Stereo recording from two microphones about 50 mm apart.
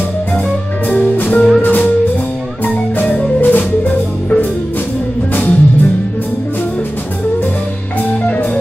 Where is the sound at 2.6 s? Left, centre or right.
Left.